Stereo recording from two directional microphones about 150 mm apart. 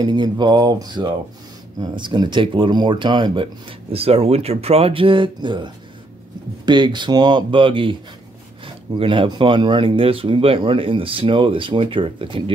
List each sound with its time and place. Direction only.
0.0 s mantra: 30° right (ahead or behind)
1.8 s speech: 30° right (ahead or behind)